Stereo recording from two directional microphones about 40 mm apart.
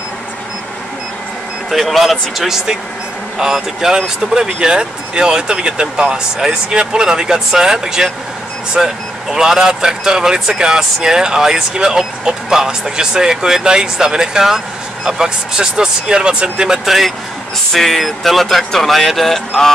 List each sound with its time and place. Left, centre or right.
1.7 s speech: centre
16.8 s speech: centre